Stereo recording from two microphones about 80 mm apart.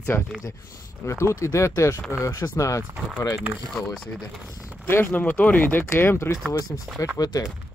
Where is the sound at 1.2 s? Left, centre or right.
Left.